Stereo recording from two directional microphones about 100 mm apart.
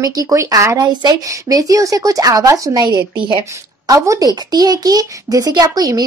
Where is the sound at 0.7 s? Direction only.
40° right (ahead or behind).